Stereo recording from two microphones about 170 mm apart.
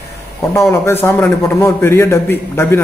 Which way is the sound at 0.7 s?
15° left (ahead or behind).